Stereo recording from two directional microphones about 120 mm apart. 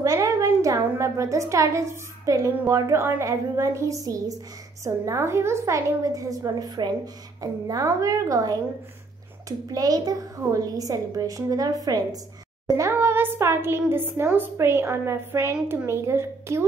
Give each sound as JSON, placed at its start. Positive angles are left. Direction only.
{"t": 0.0, "sound": "a woman's voice", "side_deg": -25}